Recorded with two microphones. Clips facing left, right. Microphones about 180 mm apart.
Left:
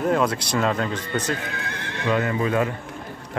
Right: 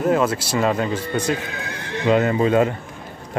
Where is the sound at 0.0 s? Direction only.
5° right (ahead or behind).